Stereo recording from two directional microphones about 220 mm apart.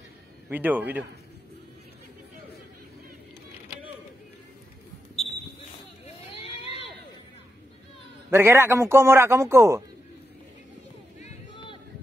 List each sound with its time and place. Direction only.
0.5 s a man's voice: 10° right (ahead or behind)
6.0 s vehicle: 25° left (ahead or behind)
8.3 s a man's voice: 10° right (ahead or behind)
11.5 s music: 20° left (ahead or behind)